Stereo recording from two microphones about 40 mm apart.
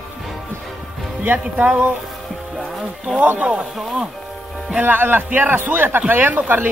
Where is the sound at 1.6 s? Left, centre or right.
Right.